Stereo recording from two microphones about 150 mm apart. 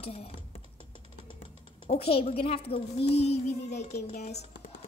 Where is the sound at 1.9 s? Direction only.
40° left (ahead or behind).